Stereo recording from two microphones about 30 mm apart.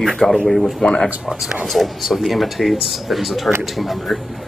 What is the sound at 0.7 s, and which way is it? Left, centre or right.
Speech, left.